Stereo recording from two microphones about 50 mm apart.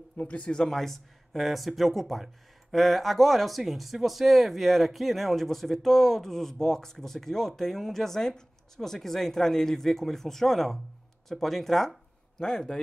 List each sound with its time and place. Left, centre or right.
0.2 s speech: left
0.6 s speech: centre